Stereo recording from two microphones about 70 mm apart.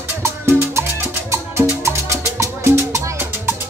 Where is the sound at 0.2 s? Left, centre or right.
Right.